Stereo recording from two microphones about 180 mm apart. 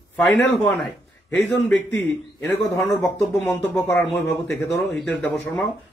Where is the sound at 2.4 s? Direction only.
15° left (ahead or behind).